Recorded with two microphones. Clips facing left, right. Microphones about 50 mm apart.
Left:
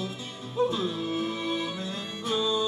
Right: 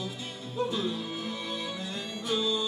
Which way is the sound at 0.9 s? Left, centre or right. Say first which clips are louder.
Left 5 dB; centre.